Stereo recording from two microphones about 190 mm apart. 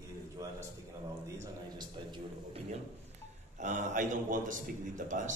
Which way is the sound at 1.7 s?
25° right (ahead or behind).